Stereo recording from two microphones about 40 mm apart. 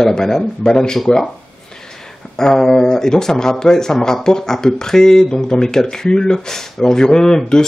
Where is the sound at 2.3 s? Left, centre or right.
Centre.